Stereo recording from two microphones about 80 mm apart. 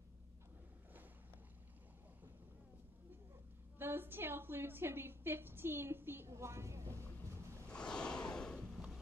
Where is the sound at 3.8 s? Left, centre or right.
Right.